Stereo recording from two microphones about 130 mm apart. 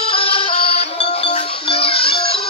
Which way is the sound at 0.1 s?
45° left (ahead or behind).